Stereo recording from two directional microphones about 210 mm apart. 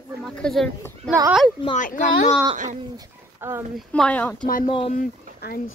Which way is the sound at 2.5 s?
35° right (ahead or behind).